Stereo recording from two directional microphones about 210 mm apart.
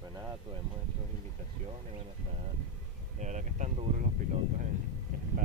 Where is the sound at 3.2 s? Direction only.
35° right (ahead or behind).